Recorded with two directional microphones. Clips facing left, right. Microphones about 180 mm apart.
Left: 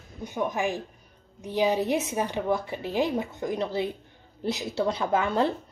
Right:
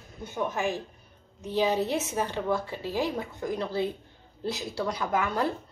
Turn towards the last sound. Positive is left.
turn(degrees=25)  # may be behind; listen again after turning